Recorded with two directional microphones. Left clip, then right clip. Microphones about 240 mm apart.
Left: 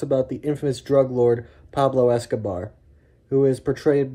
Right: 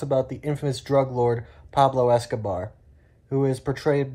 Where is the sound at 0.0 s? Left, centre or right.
Centre.